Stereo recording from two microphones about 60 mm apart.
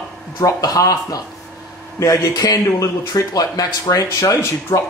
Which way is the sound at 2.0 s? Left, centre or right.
Left.